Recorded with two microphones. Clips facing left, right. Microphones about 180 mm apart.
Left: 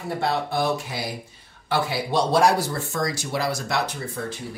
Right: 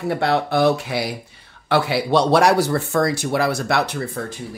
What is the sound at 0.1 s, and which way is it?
Speech, 70° right (ahead or behind).